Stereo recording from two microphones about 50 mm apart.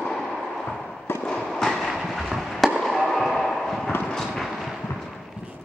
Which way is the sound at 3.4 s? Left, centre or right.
Centre.